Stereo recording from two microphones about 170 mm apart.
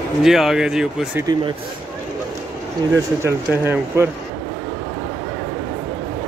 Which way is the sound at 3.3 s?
15° right (ahead or behind).